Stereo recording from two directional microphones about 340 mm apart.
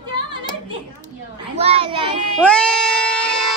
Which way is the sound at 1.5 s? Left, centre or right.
Centre.